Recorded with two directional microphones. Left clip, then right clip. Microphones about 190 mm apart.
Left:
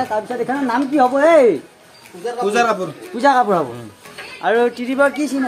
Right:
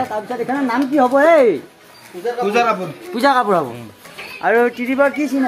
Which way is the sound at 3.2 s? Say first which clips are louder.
Left 1 dB; 25° right (ahead or behind).